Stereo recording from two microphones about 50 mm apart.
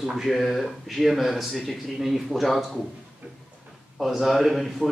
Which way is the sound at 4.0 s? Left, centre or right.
Centre.